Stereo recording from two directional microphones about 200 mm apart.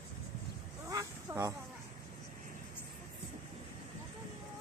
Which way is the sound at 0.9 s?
15° right (ahead or behind).